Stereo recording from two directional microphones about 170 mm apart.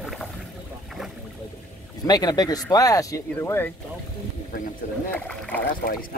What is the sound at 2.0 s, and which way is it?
Speech, 25° left (ahead or behind).